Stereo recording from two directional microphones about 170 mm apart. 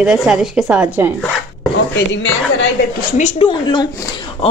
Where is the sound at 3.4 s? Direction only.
25° left (ahead or behind).